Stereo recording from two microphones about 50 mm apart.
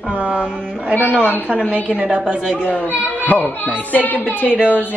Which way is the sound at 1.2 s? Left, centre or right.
Left.